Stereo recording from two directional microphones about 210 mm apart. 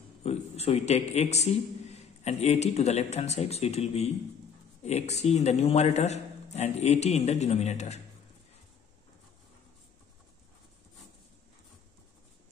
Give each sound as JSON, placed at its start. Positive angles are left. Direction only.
{"t": 0.2, "sound": "a man's voice", "side_deg": 30}